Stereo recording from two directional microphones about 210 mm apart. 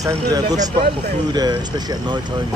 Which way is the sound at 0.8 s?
20° right (ahead or behind).